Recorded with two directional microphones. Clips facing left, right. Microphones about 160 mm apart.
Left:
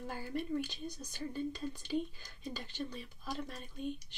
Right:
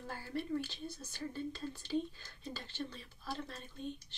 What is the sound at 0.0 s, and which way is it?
Speech, 15° left (ahead or behind).